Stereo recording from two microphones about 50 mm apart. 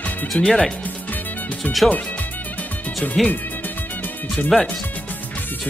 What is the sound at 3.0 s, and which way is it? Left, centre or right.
Speech, left.